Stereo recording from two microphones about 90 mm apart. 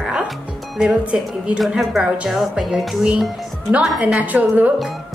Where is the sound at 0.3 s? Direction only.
10° right (ahead or behind).